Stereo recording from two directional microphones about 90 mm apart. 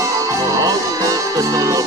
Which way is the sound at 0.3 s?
40° right (ahead or behind).